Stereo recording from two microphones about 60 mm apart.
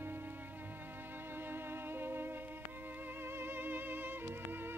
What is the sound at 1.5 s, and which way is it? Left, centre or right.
Music, right.